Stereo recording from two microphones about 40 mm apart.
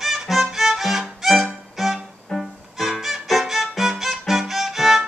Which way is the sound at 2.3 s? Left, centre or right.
Centre.